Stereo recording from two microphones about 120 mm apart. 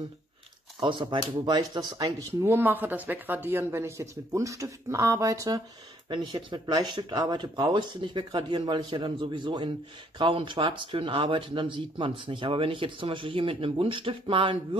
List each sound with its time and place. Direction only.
0.7 s speech: 45° right (ahead or behind)
2.4 s speech: 20° right (ahead or behind)
6.0 s speech: 40° right (ahead or behind)